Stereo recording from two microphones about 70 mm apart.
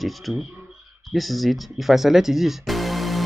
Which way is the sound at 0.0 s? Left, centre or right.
Centre.